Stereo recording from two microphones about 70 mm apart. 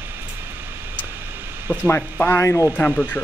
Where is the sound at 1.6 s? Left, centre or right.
Right.